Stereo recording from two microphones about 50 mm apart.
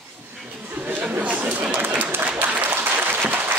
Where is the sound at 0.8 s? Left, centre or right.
Right.